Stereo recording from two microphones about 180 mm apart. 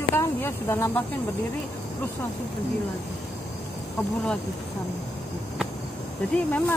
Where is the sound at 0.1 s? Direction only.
10° left (ahead or behind).